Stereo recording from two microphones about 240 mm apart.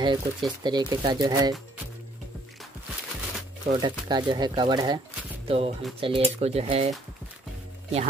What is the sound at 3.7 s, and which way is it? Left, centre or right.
Speech, centre.